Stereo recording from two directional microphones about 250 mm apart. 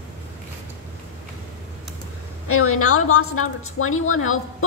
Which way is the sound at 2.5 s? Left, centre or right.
Left.